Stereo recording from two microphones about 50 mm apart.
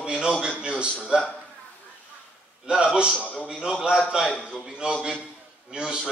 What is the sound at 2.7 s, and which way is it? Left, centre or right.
Speech, centre.